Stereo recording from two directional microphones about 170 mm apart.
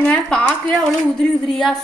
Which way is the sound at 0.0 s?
5° left (ahead or behind).